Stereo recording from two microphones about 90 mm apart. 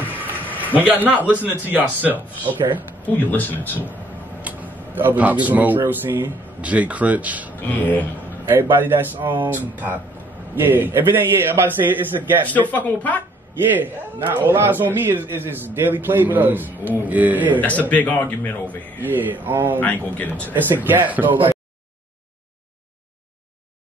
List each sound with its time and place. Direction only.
0.7 s a man's voice: 20° right (ahead or behind)
3.1 s speech: 20° left (ahead or behind)
4.4 s speech: 15° right (ahead or behind)
7.6 s speech: 20° left (ahead or behind)
8.5 s a man's voice: 25° right (ahead or behind)
12.4 s a man's voice: 20° left (ahead or behind)
13.7 s a man's voice: 20° right (ahead or behind)
17.6 s a man's voice: 20° left (ahead or behind)
18.9 s a man's voice: 20° right (ahead or behind)
19.8 s speech: 20° left (ahead or behind)
20.5 s a man's voice: 20° right (ahead or behind)